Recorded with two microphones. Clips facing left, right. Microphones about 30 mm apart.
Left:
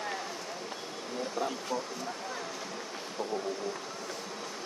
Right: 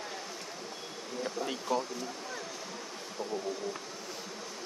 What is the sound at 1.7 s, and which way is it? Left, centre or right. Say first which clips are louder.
Speech: right 7 dB; right.